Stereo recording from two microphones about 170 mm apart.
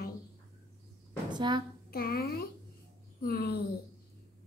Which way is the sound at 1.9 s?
65° left (ahead or behind).